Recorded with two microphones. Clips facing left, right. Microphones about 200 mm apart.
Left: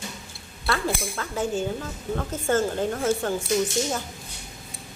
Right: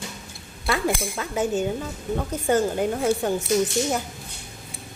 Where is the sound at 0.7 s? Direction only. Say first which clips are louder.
Right 2 dB; 15° right (ahead or behind).